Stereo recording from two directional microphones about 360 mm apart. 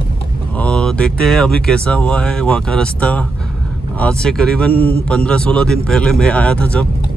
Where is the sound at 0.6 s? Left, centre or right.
Centre.